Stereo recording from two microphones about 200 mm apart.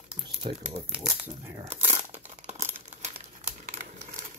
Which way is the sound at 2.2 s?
35° right (ahead or behind).